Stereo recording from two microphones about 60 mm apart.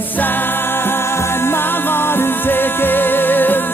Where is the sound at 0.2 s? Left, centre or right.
Left.